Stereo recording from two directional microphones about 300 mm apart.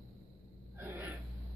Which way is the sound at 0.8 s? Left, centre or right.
Centre.